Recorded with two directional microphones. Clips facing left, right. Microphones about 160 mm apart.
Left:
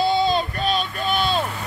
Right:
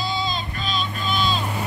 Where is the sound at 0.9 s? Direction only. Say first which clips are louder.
Left 2 dB; 60° left (ahead or behind).